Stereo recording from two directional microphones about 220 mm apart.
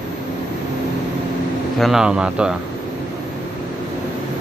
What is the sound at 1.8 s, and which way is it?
Speech, centre (ahead or behind).